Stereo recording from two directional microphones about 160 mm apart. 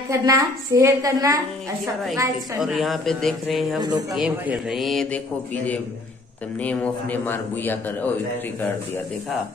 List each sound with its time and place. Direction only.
0.1 s a woman's voice: 20° right (ahead or behind)
2.6 s a man's voice: centre (ahead or behind)